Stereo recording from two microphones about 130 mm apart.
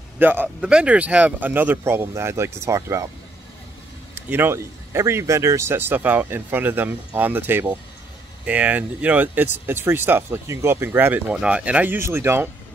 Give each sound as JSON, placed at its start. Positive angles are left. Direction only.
{"t": 0.2, "sound": "speech", "side_deg": -15}
{"t": 4.1, "sound": "speech", "side_deg": -15}